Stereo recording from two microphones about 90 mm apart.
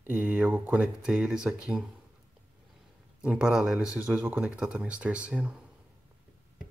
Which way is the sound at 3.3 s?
10° right (ahead or behind).